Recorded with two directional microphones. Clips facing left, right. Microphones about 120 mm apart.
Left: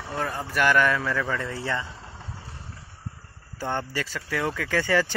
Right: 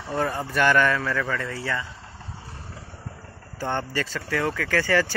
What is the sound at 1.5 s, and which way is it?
Speech, 25° left (ahead or behind).